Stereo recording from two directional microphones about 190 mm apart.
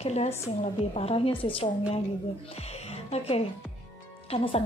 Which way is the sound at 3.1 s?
35° left (ahead or behind).